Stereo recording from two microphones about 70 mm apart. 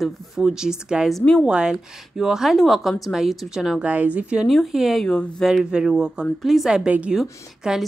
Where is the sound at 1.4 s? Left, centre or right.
Centre.